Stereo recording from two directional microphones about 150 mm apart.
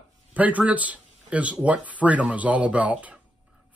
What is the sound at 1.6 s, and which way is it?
Speech, 10° right (ahead or behind).